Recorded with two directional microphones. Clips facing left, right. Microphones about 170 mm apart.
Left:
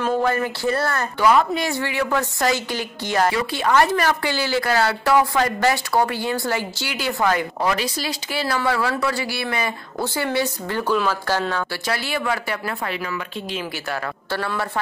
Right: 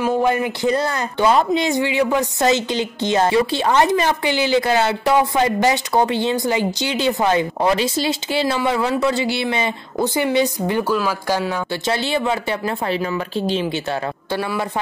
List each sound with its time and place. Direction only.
0.0 s a woman's voice: 15° right (ahead or behind)
11.9 s speech: 25° right (ahead or behind)
14.3 s a woman's voice: 15° right (ahead or behind)